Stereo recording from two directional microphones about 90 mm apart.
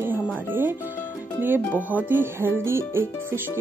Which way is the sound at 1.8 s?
20° right (ahead or behind).